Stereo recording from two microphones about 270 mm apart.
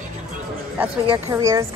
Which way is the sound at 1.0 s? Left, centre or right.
Centre.